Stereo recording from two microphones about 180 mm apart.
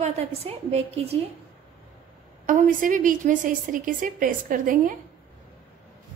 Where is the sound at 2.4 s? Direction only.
50° right (ahead or behind).